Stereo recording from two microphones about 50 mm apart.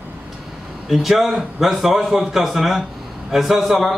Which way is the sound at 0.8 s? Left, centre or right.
Centre.